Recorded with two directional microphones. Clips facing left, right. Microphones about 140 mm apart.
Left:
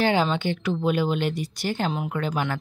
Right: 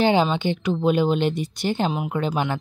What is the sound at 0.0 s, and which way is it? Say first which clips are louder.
Speech: right 3 dB; 20° right (ahead or behind).